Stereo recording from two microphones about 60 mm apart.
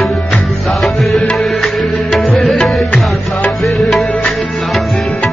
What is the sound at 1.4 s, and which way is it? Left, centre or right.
Music, centre.